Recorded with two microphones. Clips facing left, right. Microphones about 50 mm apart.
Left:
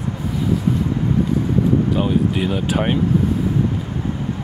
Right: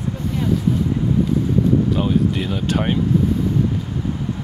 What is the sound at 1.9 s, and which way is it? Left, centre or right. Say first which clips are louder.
Speech: left 1 dB; centre.